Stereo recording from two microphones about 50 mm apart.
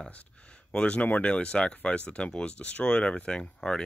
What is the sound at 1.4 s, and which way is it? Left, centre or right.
Speech, centre.